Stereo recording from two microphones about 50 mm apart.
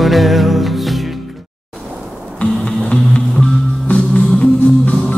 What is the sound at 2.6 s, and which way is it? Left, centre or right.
Music, left.